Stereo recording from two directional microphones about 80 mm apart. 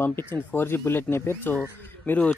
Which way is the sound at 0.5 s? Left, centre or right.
Left.